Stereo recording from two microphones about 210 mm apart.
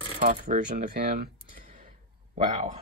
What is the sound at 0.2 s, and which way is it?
Speech, 40° right (ahead or behind).